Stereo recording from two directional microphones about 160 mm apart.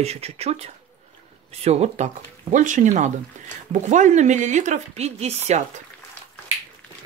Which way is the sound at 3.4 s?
50° right (ahead or behind).